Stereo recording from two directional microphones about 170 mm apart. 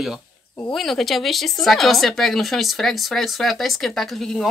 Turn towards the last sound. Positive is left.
turn(degrees=0)  # may be behind; listen again after turning